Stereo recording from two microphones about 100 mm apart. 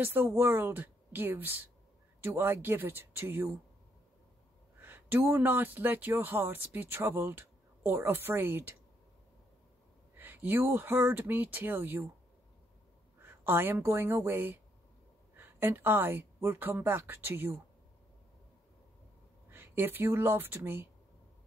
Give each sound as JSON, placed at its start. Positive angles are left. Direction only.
{"t": 0.0, "sound": "a woman's voice", "side_deg": -20}
{"t": 4.7, "sound": "a woman's voice", "side_deg": -20}
{"t": 10.1, "sound": "a woman's voice", "side_deg": -20}
{"t": 13.2, "sound": "a woman's voice", "side_deg": -20}
{"t": 19.5, "sound": "speech", "side_deg": -20}